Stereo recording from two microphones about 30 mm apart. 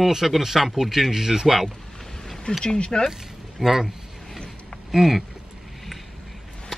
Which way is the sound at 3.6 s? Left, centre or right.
Centre.